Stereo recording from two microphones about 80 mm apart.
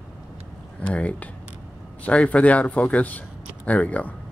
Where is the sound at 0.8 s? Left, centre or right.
Centre.